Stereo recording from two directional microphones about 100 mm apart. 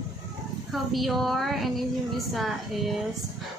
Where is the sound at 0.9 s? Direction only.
Centre (ahead or behind).